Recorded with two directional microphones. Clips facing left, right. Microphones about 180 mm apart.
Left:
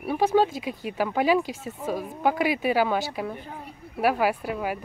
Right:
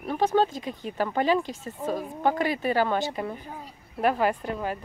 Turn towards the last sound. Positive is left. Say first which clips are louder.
# left 1 dB
turn(degrees=10)  # may be behind; listen again after turning